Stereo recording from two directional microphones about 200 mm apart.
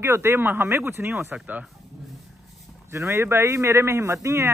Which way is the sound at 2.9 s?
15° right (ahead or behind).